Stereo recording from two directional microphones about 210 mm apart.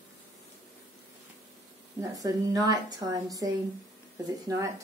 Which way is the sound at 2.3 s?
15° right (ahead or behind).